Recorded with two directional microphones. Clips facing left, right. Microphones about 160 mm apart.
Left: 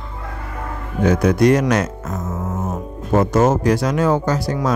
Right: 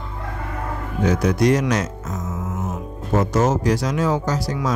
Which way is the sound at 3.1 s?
55° left (ahead or behind).